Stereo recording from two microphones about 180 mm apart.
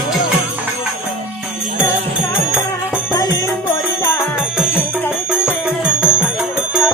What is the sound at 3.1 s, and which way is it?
Music, 20° left (ahead or behind).